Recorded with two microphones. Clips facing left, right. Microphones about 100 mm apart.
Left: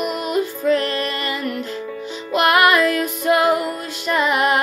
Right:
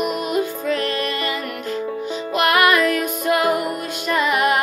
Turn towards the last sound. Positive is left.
turn(degrees=30)  # may be behind; listen again after turning